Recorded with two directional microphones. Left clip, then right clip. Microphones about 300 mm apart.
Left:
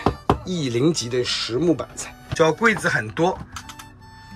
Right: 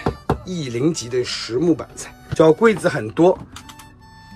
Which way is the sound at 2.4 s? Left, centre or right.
Centre.